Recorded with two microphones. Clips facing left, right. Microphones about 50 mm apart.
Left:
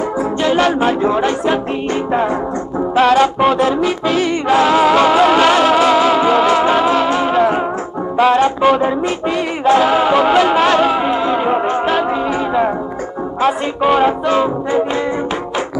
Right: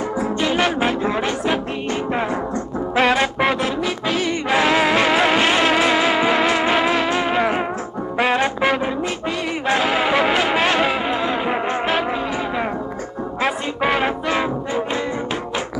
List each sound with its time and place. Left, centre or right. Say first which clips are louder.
0.6 s speech: left 6 dB; centre
3.0 s music: left 6 dB; right
3.5 s music: left 7 dB; centre
4.5 s music: left 5 dB; centre
7.0 s music: left 5 dB; centre
8.3 s music: left 7 dB; right
9.7 s music: left 7 dB; centre
11.0 s music: left 5 dB; centre
13.5 s music: left 7 dB; centre